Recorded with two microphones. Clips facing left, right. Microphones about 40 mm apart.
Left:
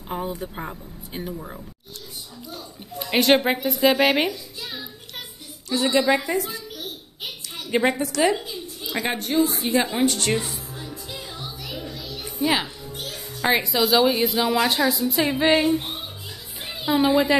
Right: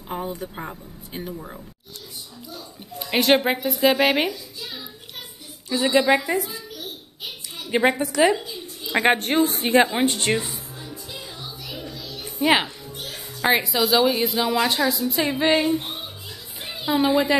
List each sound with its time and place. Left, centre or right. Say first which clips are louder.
0.1 s speech: left 1 dB; centre
3.0 s speech: even; centre
5.7 s a woman's voice: right 1 dB; centre
7.7 s a woman's voice: right 1 dB; centre
8.8 s a woman's voice: right 7 dB; right
9.9 s a woman's voice: even; right
10.7 s music: left 1 dB; centre
12.4 s speech: right 3 dB; right
13.0 s a woman's voice: right 1 dB; centre